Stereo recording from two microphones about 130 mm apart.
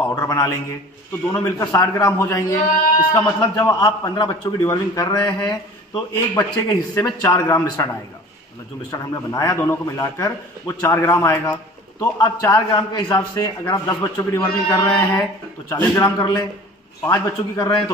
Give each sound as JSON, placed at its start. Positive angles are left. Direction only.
{"t": 0.0, "sound": "a man's voice", "side_deg": 25}
{"t": 1.3, "sound": "speech", "side_deg": 15}
{"t": 1.7, "sound": "a man's voice", "side_deg": 30}
{"t": 8.9, "sound": "a man's voice", "side_deg": 25}
{"t": 13.8, "sound": "a man's voice", "side_deg": 25}